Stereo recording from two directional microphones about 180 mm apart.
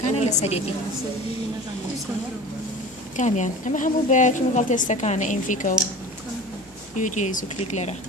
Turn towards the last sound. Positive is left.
turn(degrees=40)  # may be behind; listen again after turning